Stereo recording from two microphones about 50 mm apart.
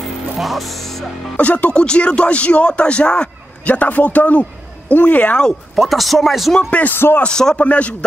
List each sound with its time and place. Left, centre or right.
0.4 s speech: centre
1.3 s speech: left
5.8 s speech: centre
6.9 s speech: left
7.2 s speech: centre
7.5 s speech: left